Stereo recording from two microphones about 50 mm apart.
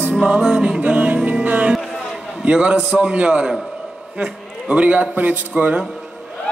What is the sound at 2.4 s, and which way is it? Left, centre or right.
Music, right.